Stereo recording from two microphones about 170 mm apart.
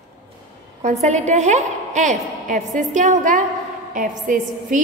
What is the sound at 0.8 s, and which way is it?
A woman's voice, 45° right (ahead or behind).